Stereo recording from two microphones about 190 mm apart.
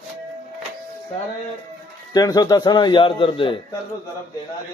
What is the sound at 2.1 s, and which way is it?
Speech, 20° left (ahead or behind).